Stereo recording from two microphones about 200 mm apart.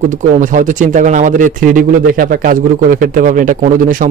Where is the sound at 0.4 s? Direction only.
40° right (ahead or behind).